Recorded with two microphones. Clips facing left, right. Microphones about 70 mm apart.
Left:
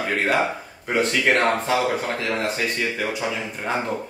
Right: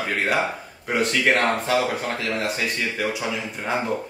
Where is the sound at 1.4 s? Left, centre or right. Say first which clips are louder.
Left 1 dB; left.